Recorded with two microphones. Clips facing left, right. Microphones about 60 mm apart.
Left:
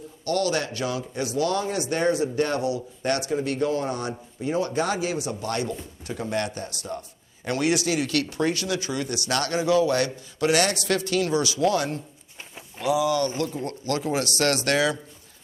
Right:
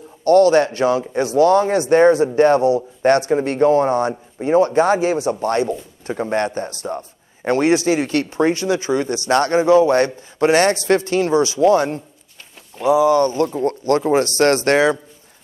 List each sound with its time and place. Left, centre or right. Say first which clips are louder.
0.2 s a man's voice: right 13 dB; right